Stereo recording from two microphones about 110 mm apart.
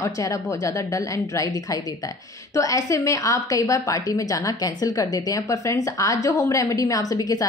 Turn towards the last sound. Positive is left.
turn(degrees=35)  # may be behind; listen again after turning